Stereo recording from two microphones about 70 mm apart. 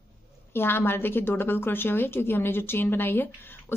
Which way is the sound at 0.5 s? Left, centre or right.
Left.